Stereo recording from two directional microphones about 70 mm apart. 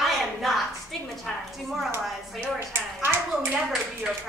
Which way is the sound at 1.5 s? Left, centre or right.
Centre.